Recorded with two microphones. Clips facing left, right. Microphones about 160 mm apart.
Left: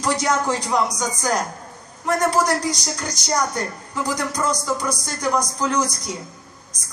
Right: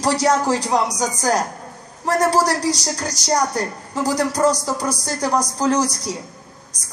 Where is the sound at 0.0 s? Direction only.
35° right (ahead or behind).